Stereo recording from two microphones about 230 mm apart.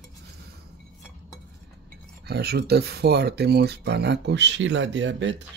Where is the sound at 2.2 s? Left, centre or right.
Right.